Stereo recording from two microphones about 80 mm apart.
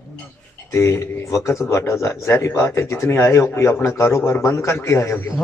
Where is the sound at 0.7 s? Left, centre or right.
Left.